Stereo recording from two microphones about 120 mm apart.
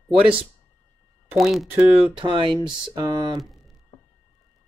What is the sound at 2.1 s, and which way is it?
Speech, 45° right (ahead or behind).